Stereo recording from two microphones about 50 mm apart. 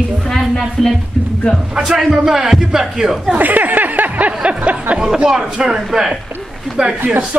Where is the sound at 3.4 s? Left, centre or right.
Right.